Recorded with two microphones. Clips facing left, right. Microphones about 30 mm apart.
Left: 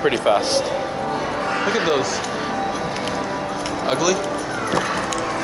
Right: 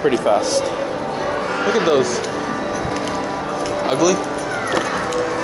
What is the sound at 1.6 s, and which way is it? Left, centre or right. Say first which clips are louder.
Speech: right 5 dB; centre.